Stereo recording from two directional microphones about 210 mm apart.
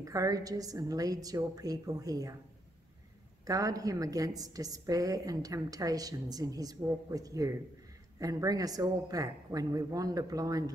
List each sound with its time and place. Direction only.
0.0 s a woman's voice: 15° right (ahead or behind)
3.4 s a woman's voice: 15° right (ahead or behind)